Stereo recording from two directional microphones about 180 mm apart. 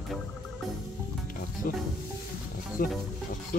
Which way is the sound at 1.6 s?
55° left (ahead or behind).